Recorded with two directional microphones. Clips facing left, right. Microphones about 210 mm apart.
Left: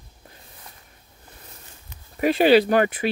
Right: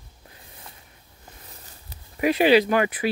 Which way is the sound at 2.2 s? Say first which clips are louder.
Left 2 dB; 30° left (ahead or behind).